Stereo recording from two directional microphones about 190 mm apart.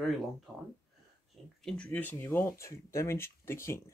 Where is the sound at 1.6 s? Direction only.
5° left (ahead or behind).